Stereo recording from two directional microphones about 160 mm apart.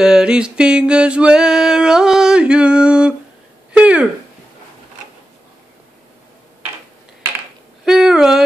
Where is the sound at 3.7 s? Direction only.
10° right (ahead or behind).